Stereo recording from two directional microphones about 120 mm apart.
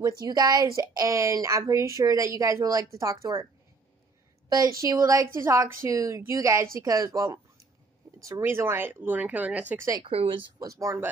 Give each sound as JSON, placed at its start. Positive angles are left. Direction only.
{"t": 0.0, "sound": "speech", "side_deg": -30}
{"t": 4.5, "sound": "speech", "side_deg": -30}
{"t": 10.0, "sound": "speech", "side_deg": -50}
{"t": 10.6, "sound": "speech", "side_deg": -25}